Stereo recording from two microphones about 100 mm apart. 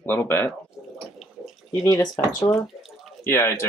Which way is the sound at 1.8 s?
35° left (ahead or behind).